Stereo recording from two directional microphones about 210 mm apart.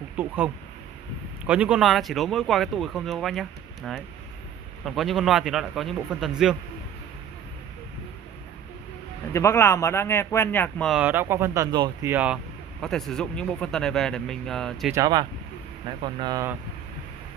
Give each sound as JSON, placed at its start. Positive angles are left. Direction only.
{"t": 0.2, "sound": "speech", "side_deg": -10}
{"t": 1.4, "sound": "speech", "side_deg": -5}
{"t": 9.3, "sound": "speech", "side_deg": 15}
{"t": 10.9, "sound": "speech", "side_deg": -5}
{"t": 12.1, "sound": "speech", "side_deg": -5}
{"t": 15.0, "sound": "speech", "side_deg": -20}